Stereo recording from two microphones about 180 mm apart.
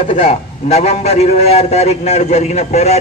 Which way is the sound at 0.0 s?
35° left (ahead or behind).